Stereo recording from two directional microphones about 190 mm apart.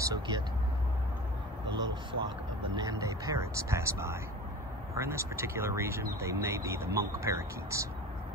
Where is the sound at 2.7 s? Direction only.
15° right (ahead or behind).